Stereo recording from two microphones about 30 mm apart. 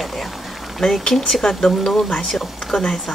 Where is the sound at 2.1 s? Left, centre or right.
Centre.